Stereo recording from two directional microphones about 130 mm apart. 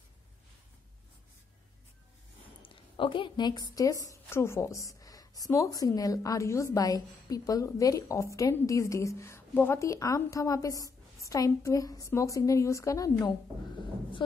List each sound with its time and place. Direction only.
2.6 s a woman's voice: 40° left (ahead or behind)